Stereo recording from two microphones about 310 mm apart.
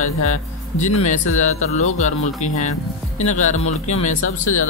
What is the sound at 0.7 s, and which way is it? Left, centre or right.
Speech, left.